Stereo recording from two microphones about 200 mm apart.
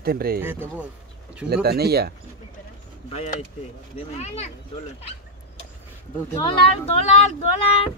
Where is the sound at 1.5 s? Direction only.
50° right (ahead or behind).